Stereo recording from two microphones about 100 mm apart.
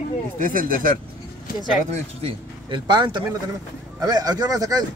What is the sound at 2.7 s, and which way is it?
Speech, 50° right (ahead or behind).